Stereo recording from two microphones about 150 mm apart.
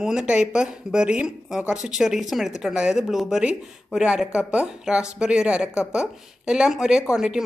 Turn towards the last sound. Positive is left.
turn(degrees=-5)  # may be behind; listen again after turning